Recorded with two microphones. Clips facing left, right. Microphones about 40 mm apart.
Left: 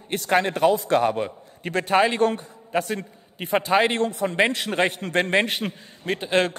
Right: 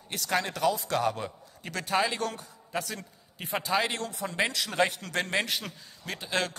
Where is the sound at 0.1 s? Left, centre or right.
Left.